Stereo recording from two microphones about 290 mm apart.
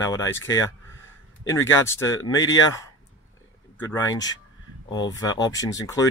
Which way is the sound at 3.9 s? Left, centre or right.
Centre.